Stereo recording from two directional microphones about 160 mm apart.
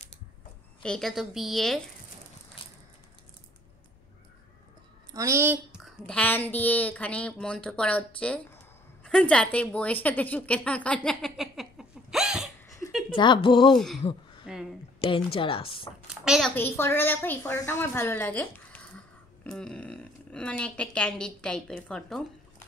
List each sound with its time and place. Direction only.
0.8 s a woman's voice: 5° left (ahead or behind)
5.1 s a woman's voice: 20° right (ahead or behind)
5.9 s a woman's voice: 5° left (ahead or behind)
13.1 s speech: 30° left (ahead or behind)
14.4 s a sound: 5° right (ahead or behind)
15.0 s speech: 30° left (ahead or behind)
16.3 s a woman's voice: centre (ahead or behind)
16.5 s a woman's voice: 15° left (ahead or behind)